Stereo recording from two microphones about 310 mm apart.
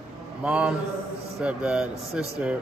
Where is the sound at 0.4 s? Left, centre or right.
Centre.